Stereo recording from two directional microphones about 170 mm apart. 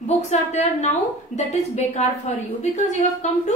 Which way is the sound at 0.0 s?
45° left (ahead or behind).